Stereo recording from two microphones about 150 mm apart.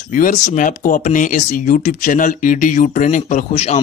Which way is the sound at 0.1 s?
60° left (ahead or behind).